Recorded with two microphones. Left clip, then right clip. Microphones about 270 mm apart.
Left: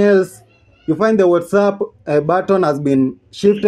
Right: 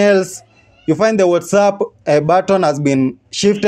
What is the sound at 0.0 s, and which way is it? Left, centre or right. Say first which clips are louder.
Speech: right 1 dB; right.